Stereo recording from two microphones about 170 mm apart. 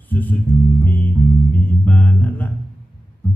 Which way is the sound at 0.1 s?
10° left (ahead or behind).